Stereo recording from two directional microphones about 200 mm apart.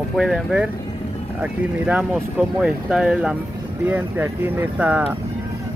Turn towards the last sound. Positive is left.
turn(degrees=-5)  # may be behind; listen again after turning